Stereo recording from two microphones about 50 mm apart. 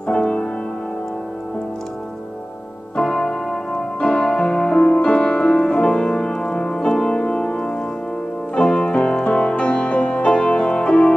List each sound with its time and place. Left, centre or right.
0.1 s music: centre
3.0 s music: centre